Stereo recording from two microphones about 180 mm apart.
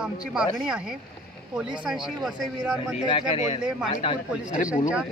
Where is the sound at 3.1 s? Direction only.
35° left (ahead or behind).